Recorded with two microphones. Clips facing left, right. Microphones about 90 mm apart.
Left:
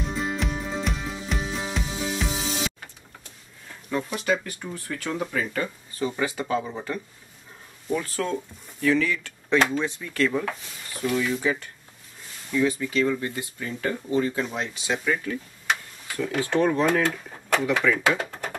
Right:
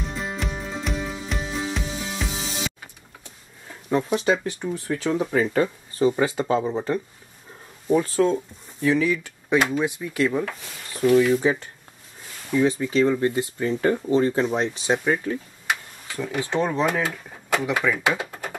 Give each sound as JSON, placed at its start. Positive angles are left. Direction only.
{"t": 0.1, "sound": "music", "side_deg": 0}
{"t": 3.9, "sound": "speech", "side_deg": -20}
{"t": 5.3, "sound": "speech", "side_deg": -30}
{"t": 8.8, "sound": "speech", "side_deg": -15}
{"t": 11.4, "sound": "speech", "side_deg": -25}
{"t": 16.2, "sound": "speech", "side_deg": -15}